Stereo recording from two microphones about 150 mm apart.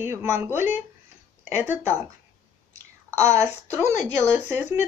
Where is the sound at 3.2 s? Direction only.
20° right (ahead or behind).